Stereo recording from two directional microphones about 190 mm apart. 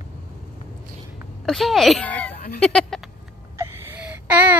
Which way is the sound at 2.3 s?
50° left (ahead or behind).